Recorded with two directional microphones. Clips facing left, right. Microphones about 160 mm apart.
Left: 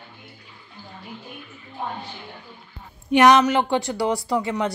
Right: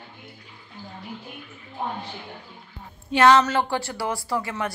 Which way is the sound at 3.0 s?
15° left (ahead or behind).